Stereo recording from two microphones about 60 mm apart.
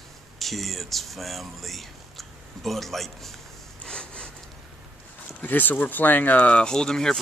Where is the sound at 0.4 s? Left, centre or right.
Centre.